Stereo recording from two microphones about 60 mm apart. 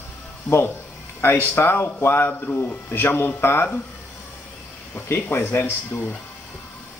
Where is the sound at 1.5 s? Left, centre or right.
Left.